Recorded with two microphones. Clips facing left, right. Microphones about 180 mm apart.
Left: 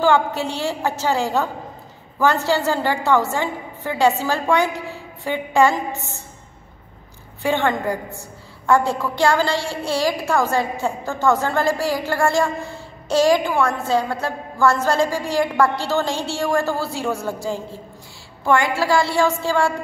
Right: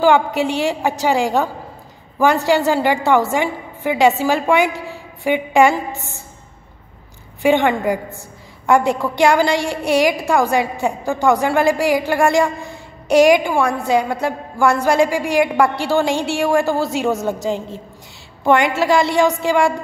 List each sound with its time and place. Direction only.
0.0 s a woman's voice: 15° right (ahead or behind)
7.4 s a woman's voice: 15° right (ahead or behind)